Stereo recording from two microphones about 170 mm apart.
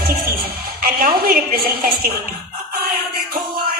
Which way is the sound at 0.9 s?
65° right (ahead or behind).